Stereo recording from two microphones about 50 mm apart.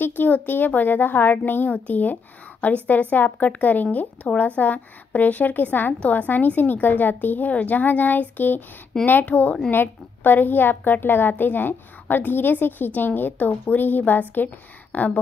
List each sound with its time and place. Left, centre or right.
0.0 s a woman's voice: left
9.2 s speech: left
9.7 s a woman's voice: left